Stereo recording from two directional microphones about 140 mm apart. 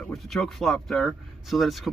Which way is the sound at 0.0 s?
Centre (ahead or behind).